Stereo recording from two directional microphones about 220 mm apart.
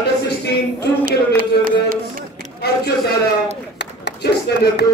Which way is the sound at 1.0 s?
40° right (ahead or behind).